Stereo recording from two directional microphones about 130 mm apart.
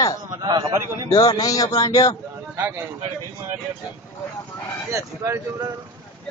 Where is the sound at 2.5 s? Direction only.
15° right (ahead or behind).